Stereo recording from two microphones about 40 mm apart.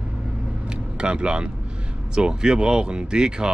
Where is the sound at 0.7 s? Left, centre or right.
Right.